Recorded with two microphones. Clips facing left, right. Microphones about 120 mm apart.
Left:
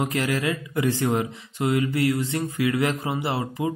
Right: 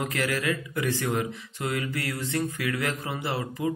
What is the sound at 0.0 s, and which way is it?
Speech, 25° left (ahead or behind).